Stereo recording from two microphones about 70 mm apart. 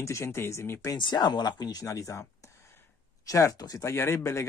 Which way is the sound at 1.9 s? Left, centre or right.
Left.